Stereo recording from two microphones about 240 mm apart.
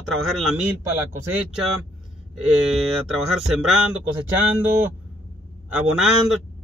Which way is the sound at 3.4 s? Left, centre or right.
Centre.